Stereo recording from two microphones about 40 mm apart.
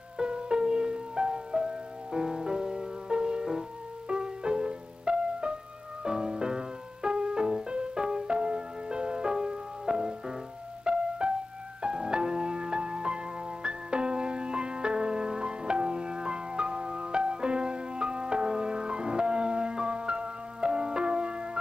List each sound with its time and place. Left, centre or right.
0.2 s music: right